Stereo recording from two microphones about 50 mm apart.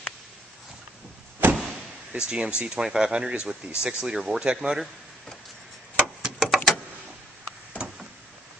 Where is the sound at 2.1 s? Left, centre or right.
Right.